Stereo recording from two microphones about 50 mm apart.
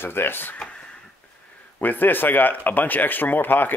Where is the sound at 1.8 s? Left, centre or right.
Left.